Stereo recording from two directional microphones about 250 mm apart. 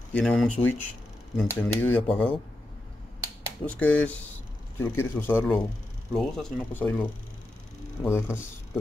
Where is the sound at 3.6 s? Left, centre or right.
Centre.